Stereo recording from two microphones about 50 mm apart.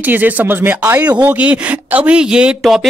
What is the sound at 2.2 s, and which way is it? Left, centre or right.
Speech, centre.